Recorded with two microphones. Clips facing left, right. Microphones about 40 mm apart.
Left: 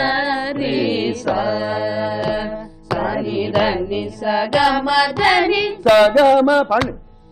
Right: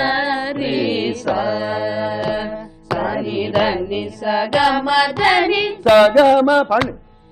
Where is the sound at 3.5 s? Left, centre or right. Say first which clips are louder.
Even; centre.